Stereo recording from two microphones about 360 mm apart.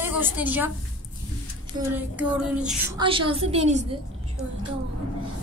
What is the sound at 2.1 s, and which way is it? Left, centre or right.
Speech, centre.